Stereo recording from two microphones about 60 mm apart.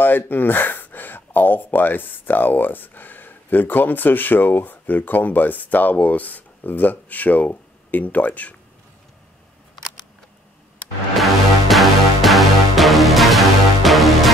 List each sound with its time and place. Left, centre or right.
0.0 s speech: left
11.1 s music: centre